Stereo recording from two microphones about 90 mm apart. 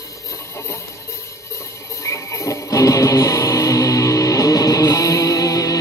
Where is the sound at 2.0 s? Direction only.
35° left (ahead or behind).